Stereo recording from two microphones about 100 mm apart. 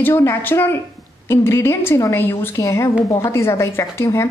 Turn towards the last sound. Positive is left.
turn(degrees=25)  # may be behind; listen again after turning